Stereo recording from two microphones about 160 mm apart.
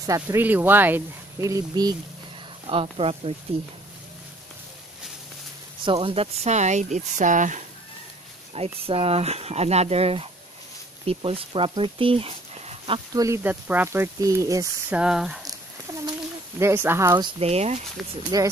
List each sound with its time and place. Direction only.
0.0 s speech: 20° right (ahead or behind)
2.6 s speech: 35° right (ahead or behind)
5.9 s speech: 35° right (ahead or behind); by 7.6 s 50° right (ahead or behind)
8.7 s speech: 35° right (ahead or behind)
13.2 s speech: 15° right (ahead or behind)
14.9 s speech: 5° right (ahead or behind)
15.4 s a sound: 20° right (ahead or behind)
17.4 s speech: 40° right (ahead or behind)
18.3 s speech: 25° right (ahead or behind)